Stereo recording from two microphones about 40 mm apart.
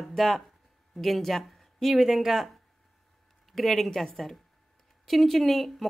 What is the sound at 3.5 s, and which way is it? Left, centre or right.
Speech, centre.